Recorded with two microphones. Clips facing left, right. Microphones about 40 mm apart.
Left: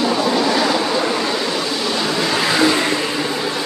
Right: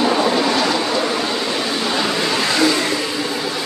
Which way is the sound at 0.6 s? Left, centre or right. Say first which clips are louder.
Left 1 dB; centre.